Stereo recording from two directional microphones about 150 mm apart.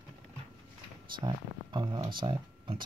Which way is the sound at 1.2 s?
30° right (ahead or behind).